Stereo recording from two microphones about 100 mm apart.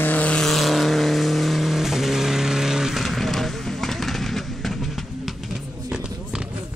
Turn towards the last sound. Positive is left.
turn(degrees=0)  # may be behind; listen again after turning